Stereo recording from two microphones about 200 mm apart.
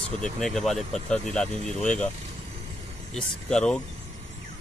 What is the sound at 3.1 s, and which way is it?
Speech, 5° left (ahead or behind).